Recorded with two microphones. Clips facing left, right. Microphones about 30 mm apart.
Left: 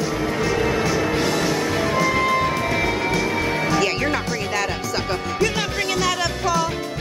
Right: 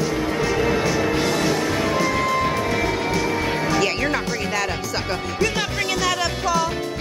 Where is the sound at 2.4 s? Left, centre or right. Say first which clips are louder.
Even; centre.